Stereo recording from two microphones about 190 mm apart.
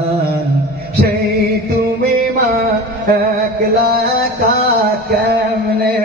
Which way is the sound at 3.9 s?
55° right (ahead or behind).